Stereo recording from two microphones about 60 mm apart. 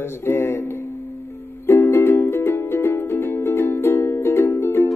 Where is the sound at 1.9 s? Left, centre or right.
Left.